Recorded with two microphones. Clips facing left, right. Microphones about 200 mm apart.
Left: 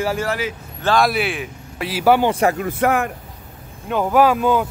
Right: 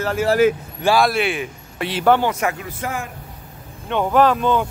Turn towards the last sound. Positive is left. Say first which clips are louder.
# left 1 dB
turn(degrees=10)  # may be behind; listen again after turning